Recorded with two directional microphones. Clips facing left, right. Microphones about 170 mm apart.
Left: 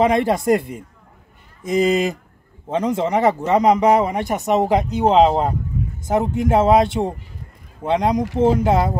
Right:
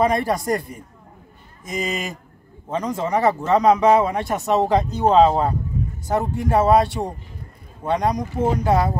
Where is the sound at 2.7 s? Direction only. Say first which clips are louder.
Left 3 dB; 25° left (ahead or behind).